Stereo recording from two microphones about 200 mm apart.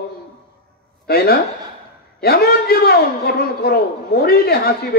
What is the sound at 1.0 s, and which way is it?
A man's voice, 50° left (ahead or behind).